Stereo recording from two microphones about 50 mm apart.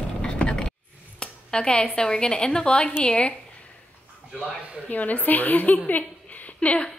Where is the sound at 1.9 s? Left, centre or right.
Centre.